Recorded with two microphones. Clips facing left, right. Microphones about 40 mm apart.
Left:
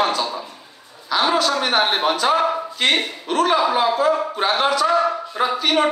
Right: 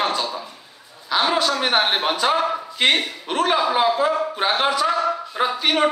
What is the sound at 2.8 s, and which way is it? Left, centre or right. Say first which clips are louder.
A man's voice: right 1 dB; centre.